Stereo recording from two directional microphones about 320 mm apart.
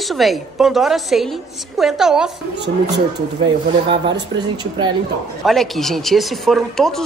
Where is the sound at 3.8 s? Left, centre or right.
Centre.